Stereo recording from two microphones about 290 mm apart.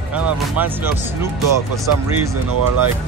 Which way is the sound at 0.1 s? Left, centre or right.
Centre.